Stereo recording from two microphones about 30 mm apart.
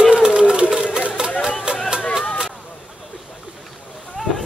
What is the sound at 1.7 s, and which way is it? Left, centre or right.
Music, right.